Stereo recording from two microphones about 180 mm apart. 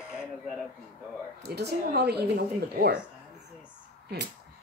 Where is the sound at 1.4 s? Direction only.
65° right (ahead or behind).